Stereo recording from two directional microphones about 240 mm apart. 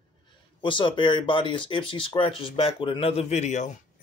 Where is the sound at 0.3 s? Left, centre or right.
Centre.